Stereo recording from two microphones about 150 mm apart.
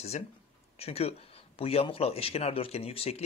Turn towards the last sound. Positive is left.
turn(degrees=40)  # may be behind; listen again after turning